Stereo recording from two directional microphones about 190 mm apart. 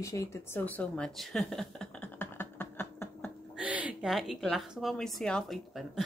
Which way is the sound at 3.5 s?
5° right (ahead or behind).